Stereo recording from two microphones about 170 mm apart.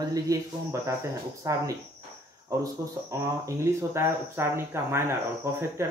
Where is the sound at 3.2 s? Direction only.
15° right (ahead or behind).